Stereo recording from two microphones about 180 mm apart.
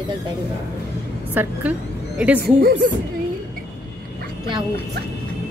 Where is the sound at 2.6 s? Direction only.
50° right (ahead or behind).